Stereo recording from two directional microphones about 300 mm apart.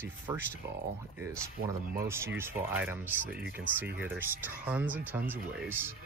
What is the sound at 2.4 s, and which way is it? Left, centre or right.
Speech, centre.